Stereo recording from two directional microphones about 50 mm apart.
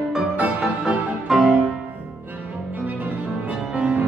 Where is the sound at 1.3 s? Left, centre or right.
Centre.